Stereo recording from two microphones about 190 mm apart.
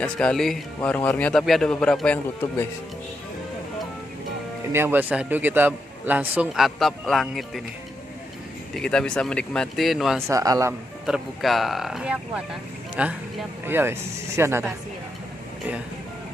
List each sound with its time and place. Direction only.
0.0 s speech: 5° left (ahead or behind)
4.7 s a man's voice: 10° right (ahead or behind)
8.7 s speech: 5° left (ahead or behind)
10.2 s a man's voice: 15° right (ahead or behind)
11.1 s a man's voice: centre (ahead or behind)